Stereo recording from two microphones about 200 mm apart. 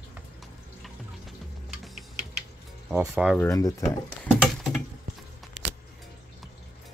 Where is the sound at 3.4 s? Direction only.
15° left (ahead or behind).